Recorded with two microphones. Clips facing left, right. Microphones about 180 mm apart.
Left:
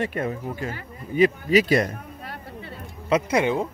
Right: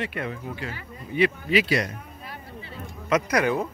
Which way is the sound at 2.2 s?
65° left (ahead or behind).